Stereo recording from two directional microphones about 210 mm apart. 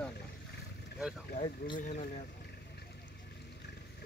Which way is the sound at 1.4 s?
40° left (ahead or behind).